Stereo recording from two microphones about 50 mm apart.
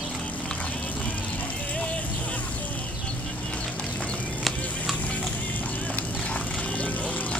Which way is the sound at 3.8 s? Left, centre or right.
Left.